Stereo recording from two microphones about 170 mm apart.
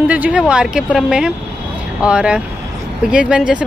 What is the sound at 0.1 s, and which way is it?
A woman's voice, 5° right (ahead or behind).